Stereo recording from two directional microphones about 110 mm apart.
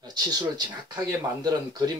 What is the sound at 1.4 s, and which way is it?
Speech, 35° right (ahead or behind).